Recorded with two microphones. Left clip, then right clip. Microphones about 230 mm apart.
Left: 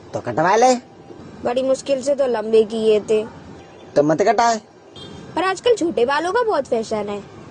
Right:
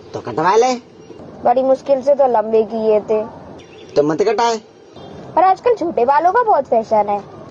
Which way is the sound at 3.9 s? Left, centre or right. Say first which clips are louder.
Right 1 dB; left.